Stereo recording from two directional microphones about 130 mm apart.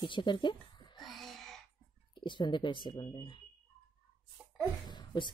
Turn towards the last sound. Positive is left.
turn(degrees=35)  # may be behind; listen again after turning